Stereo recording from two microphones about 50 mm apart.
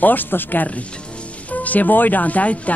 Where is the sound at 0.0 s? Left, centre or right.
Left.